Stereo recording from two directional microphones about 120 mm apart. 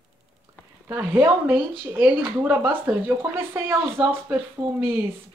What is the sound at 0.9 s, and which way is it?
Speech, 15° right (ahead or behind).